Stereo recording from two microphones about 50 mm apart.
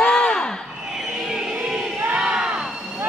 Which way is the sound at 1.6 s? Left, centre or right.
Centre.